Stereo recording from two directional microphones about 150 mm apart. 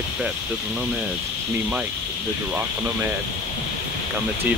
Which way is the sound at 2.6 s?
15° right (ahead or behind).